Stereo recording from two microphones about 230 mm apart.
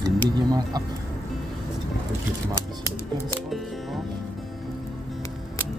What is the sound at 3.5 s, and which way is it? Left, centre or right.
Music, centre.